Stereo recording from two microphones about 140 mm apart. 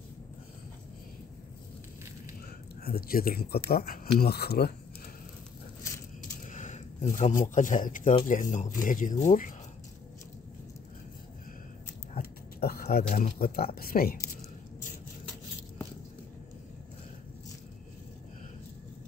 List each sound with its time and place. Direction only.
2.8 s speech: 90° left
6.5 s a sound: 60° left (ahead or behind)
7.2 s speech: 65° left (ahead or behind)
12.2 s speech: 90° left